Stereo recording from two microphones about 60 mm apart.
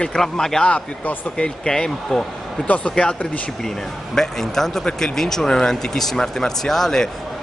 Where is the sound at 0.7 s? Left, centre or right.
Left.